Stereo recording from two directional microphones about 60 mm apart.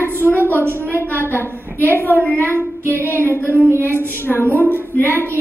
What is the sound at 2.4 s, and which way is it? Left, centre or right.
Child singing, right.